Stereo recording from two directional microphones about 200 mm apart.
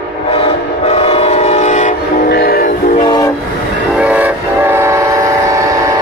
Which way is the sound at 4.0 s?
5° right (ahead or behind).